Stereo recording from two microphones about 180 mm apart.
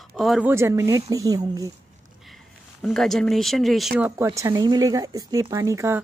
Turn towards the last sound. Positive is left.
turn(degrees=-15)  # may be behind; listen again after turning